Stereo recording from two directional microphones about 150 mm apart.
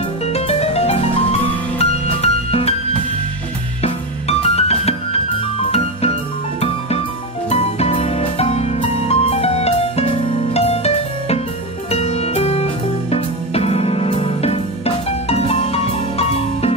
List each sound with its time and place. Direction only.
0.3 s music: 45° left (ahead or behind)
3.8 s music: 45° left (ahead or behind)
7.4 s music: 45° left (ahead or behind)